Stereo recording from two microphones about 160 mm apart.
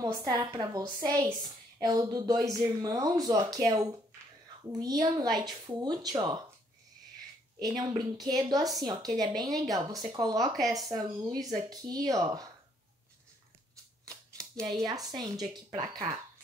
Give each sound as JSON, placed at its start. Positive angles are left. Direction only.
{"t": 0.0, "sound": "speech", "side_deg": -25}
{"t": 7.5, "sound": "speech", "side_deg": -25}
{"t": 14.0, "sound": "a sound", "side_deg": -20}
{"t": 14.9, "sound": "speech", "side_deg": -25}